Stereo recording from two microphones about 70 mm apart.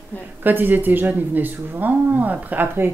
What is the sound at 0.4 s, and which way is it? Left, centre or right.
Speech, right.